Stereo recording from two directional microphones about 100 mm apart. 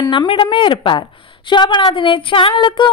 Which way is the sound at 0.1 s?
55° left (ahead or behind).